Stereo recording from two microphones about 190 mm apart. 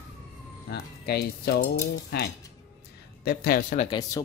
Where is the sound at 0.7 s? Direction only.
60° left (ahead or behind).